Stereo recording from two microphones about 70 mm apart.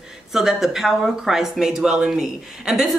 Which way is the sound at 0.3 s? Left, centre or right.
Centre.